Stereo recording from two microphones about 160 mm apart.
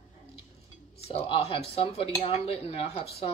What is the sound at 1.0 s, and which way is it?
Dishes, 40° left (ahead or behind).